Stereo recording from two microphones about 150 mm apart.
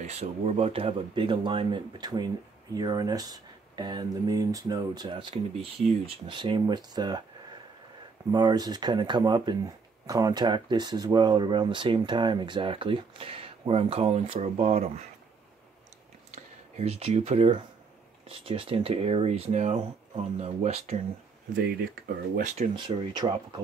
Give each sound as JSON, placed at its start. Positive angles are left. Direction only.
{"t": 0.0, "sound": "speech", "side_deg": -45}
{"t": 8.3, "sound": "speech", "side_deg": -30}
{"t": 16.3, "sound": "a sound", "side_deg": -45}
{"t": 18.3, "sound": "speech", "side_deg": -35}
{"t": 21.5, "sound": "speech", "side_deg": -90}
{"t": 22.8, "sound": "speech", "side_deg": -30}